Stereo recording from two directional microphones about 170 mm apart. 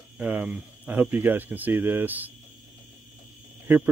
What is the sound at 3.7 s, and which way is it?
Speech, 10° right (ahead or behind).